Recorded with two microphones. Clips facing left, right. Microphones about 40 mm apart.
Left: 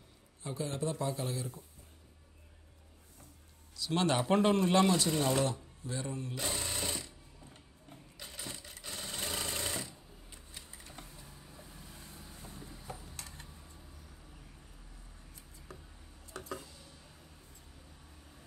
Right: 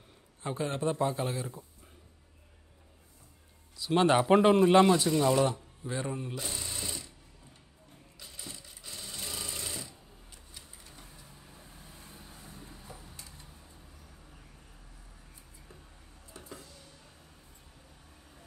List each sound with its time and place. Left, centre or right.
0.4 s a man's voice: right
3.7 s a man's voice: right
5.2 s a man's voice: right
6.3 s speech: left
6.6 s sewing machine: left
8.2 s sewing machine: left
11.1 s printer: right
11.8 s vehicle: right
16.3 s a sound: left